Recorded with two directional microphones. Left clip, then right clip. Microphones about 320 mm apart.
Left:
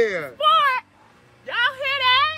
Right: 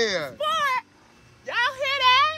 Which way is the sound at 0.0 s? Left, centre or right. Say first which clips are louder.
Left 5 dB; centre.